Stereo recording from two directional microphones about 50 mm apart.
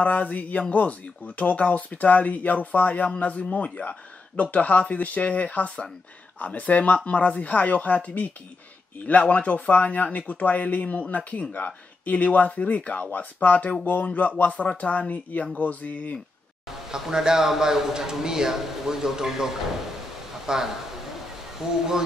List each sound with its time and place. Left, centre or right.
0.0 s speech: left
16.9 s a man's voice: centre